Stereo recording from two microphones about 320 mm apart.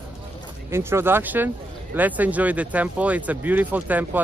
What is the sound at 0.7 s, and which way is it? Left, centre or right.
Speech, centre.